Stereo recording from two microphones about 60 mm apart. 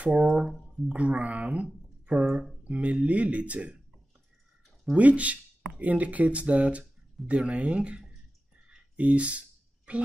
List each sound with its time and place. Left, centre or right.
0.0 s speech: centre
4.9 s speech: right
8.6 s a sound: centre